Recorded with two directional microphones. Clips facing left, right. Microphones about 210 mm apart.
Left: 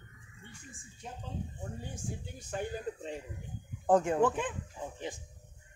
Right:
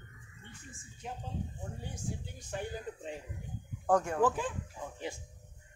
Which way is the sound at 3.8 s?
20° left (ahead or behind).